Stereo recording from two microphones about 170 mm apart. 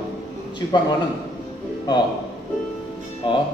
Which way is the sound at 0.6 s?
25° left (ahead or behind).